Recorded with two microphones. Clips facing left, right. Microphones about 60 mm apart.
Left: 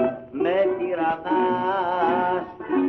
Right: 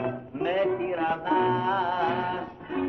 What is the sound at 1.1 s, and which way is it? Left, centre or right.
Mantra, centre.